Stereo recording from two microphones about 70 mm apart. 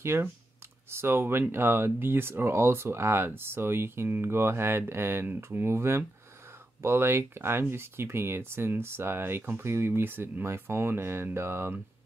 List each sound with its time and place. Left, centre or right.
0.0 s speech: right